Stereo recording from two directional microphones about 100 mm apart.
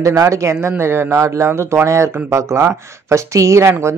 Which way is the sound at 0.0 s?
30° right (ahead or behind).